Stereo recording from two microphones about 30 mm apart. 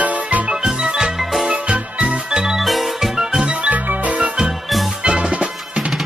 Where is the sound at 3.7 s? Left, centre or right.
Right.